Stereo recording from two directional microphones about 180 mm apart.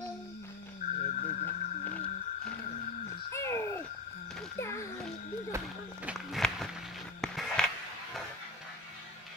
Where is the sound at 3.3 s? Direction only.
15° left (ahead or behind).